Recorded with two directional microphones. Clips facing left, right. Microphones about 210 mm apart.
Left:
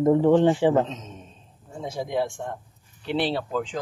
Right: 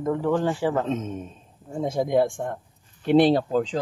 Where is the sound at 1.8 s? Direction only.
50° right (ahead or behind).